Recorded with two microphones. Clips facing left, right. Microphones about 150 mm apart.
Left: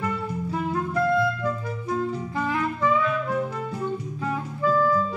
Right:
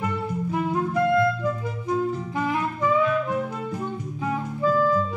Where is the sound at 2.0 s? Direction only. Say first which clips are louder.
Right 1 dB; 15° right (ahead or behind).